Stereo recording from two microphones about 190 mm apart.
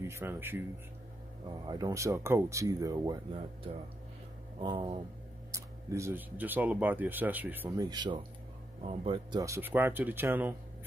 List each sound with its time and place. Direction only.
0.0 s speech: 10° right (ahead or behind)
1.7 s speech: 20° right (ahead or behind)
4.6 s speech: 25° right (ahead or behind)
5.5 s speech: 15° right (ahead or behind)
7.8 s speech: 20° right (ahead or behind)